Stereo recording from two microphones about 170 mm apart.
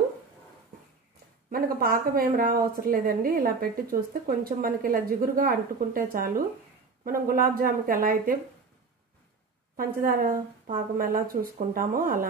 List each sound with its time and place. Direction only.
1.5 s speech: 60° right (ahead or behind)
9.8 s speech: 55° right (ahead or behind)